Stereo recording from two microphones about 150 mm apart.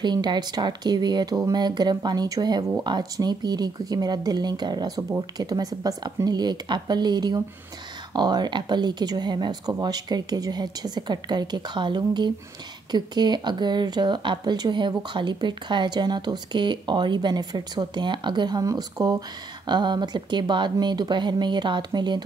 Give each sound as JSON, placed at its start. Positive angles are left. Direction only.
{"t": 0.0, "sound": "speech", "side_deg": -30}